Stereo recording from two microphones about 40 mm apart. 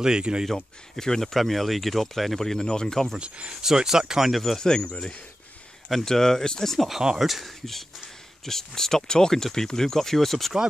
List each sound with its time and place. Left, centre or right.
0.0 s speech: right
0.6 s speech: centre
2.6 s speech: centre
3.2 s speech: right
3.6 s speech: centre
4.3 s speech: centre
4.6 s speech: centre
6.0 s speech: centre
6.9 s speech: centre
7.2 s speech: centre